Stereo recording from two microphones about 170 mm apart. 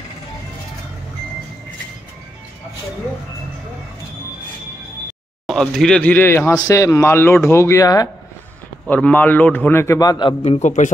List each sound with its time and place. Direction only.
5.5 s speech: 5° left (ahead or behind); by 8.1 s 20° left (ahead or behind)
8.8 s speech: 10° left (ahead or behind); by 10.3 s 25° left (ahead or behind)
10.4 s a man's voice: 40° left (ahead or behind)